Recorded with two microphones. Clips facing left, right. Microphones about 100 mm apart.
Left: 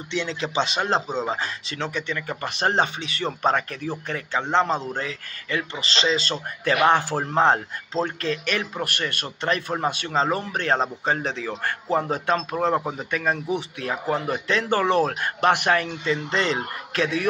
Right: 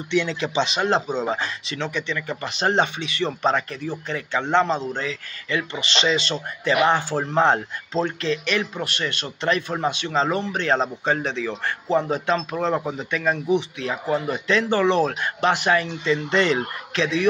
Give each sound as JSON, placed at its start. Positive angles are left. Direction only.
{"t": 0.1, "sound": "speech", "side_deg": 30}
{"t": 6.9, "sound": "speech", "side_deg": 50}
{"t": 7.3, "sound": "speech", "side_deg": 35}
{"t": 8.0, "sound": "speech", "side_deg": 45}
{"t": 12.5, "sound": "speech", "side_deg": 35}
{"t": 13.1, "sound": "speech", "side_deg": 45}
{"t": 16.3, "sound": "speech", "side_deg": 35}
{"t": 16.9, "sound": "speech", "side_deg": 50}